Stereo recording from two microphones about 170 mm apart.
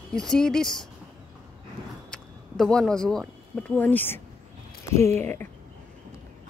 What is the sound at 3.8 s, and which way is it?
Speech, 10° left (ahead or behind).